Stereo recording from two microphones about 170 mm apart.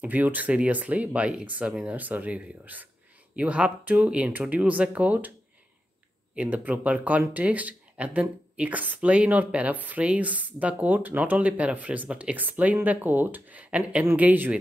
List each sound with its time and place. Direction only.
0.0 s speech: 10° right (ahead or behind)
6.3 s speech: 10° right (ahead or behind)